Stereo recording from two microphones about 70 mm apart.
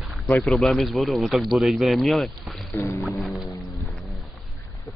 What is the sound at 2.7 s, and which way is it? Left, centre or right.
Music, left.